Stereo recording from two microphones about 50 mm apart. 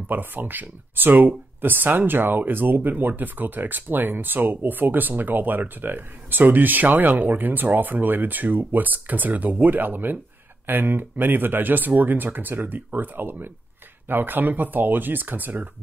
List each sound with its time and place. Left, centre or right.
0.1 s speech: right